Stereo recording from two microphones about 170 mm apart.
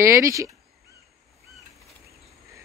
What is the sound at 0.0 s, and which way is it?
Speech, 15° right (ahead or behind).